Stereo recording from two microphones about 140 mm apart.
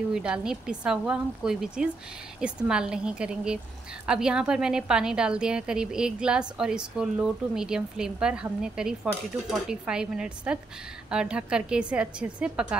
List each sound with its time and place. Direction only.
0.1 s a woman's voice: 5° right (ahead or behind)